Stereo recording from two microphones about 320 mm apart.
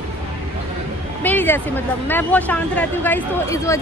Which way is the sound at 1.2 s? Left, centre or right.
Centre.